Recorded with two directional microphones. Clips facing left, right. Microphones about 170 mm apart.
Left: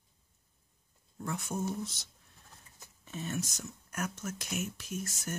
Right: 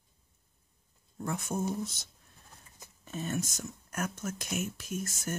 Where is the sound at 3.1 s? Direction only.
45° right (ahead or behind).